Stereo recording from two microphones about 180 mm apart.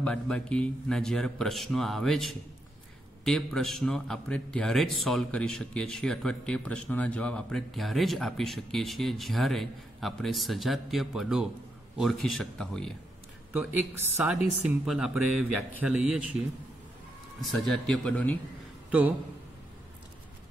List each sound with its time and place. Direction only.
0.0 s speech: 5° left (ahead or behind)
13.5 s speech: 10° right (ahead or behind); by 18.4 s 5° left (ahead or behind)
18.9 s speech: 5° right (ahead or behind)